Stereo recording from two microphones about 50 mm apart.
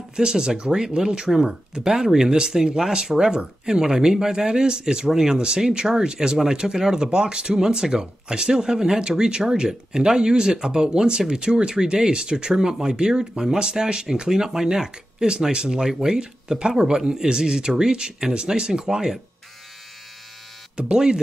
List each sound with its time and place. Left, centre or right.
0.1 s speech: centre
20.7 s speech: centre